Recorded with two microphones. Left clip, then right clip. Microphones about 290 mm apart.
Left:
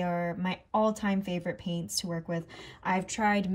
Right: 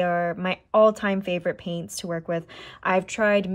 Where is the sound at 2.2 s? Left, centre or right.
Centre.